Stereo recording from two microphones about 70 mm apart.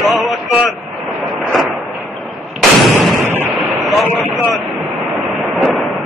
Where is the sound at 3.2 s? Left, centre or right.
Right.